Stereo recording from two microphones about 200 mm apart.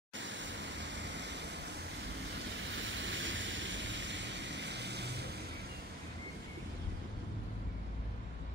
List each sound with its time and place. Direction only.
0.2 s waterfall: 65° right (ahead or behind)
2.7 s vehicle: 65° right (ahead or behind)